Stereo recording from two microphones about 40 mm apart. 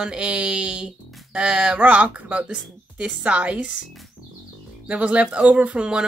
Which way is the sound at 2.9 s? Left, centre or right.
Right.